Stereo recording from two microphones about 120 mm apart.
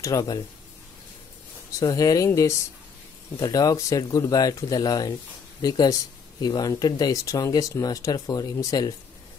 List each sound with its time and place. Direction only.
0.0 s speech: 30° left (ahead or behind)
1.7 s speech: 30° left (ahead or behind)